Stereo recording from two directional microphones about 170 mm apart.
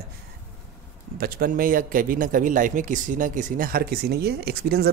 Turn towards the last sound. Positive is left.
turn(degrees=-65)  # may be behind; listen again after turning